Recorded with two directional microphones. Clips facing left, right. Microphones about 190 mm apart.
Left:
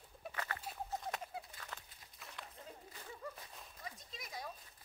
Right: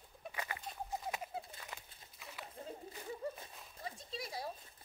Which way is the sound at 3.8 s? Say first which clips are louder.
Right 7 dB; 30° right (ahead or behind).